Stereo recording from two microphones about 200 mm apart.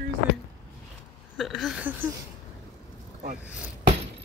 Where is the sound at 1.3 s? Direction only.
Centre (ahead or behind).